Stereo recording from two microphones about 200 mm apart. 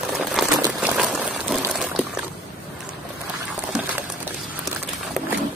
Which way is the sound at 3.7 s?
5° right (ahead or behind).